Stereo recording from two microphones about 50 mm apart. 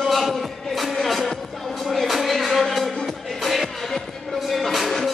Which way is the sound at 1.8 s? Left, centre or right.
Centre.